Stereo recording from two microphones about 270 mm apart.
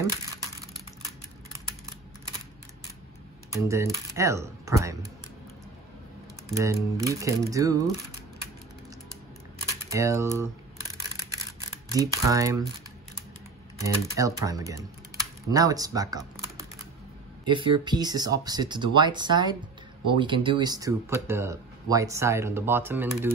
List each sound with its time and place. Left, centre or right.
3.5 s speech: centre
6.5 s speech: centre
9.7 s speech: centre
11.9 s speech: centre
13.7 s speech: centre